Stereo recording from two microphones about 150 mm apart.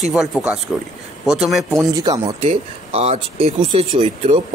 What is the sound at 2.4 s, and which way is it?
Speech, 45° right (ahead or behind).